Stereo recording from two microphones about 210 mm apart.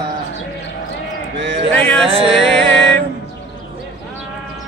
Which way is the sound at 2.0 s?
25° right (ahead or behind).